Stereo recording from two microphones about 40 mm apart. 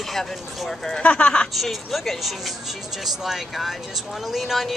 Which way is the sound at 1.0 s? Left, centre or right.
Left.